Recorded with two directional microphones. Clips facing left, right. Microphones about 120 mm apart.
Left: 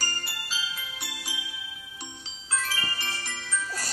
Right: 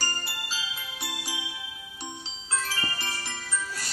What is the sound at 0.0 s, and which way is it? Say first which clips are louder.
Music: right 2 dB; 25° right (ahead or behind).